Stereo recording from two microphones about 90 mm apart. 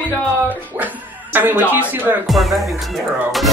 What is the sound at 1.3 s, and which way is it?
Speech, 20° right (ahead or behind).